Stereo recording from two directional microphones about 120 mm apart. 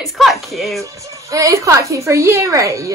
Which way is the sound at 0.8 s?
25° right (ahead or behind).